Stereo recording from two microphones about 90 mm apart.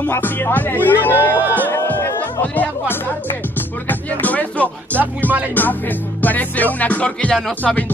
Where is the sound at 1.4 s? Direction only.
20° right (ahead or behind).